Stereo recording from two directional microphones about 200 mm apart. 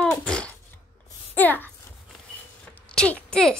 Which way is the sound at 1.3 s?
10° left (ahead or behind).